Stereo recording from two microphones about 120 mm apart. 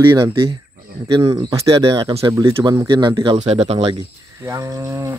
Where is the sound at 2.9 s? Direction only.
40° right (ahead or behind).